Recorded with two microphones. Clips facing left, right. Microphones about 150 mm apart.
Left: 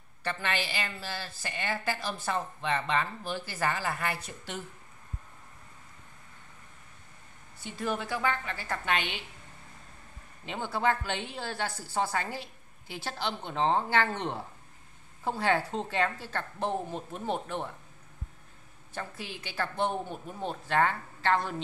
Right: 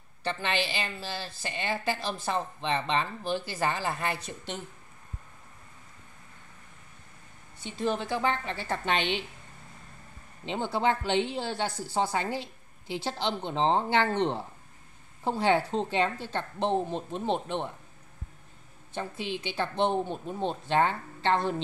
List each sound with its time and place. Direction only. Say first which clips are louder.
0.2 s a woman's voice: right 3 dB; 25° right (ahead or behind)
7.6 s a woman's voice: right 3 dB; 25° right (ahead or behind)
10.4 s a woman's voice: right 2 dB; 25° right (ahead or behind)
18.9 s a woman's voice: right 6 dB; 25° right (ahead or behind)